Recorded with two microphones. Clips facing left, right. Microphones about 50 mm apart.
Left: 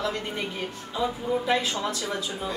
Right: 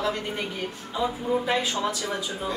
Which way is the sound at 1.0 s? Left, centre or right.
Centre.